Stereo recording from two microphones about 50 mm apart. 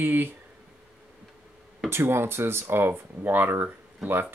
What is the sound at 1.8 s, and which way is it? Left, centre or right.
Speech, right.